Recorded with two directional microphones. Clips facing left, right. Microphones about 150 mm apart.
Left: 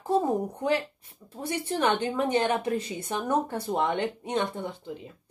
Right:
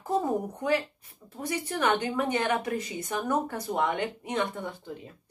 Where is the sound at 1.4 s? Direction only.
30° left (ahead or behind).